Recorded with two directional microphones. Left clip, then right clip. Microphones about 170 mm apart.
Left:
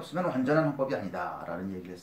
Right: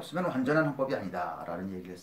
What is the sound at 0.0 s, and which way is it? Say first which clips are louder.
Speech: left 1 dB; 30° right (ahead or behind).